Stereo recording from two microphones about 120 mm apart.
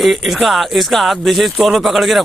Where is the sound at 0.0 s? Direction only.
Centre (ahead or behind).